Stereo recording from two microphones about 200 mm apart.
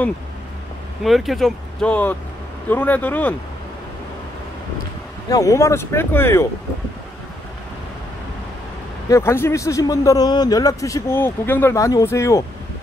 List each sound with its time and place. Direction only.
1.0 s speech: centre (ahead or behind)
5.3 s speech: 15° left (ahead or behind)
9.1 s speech: 10° left (ahead or behind)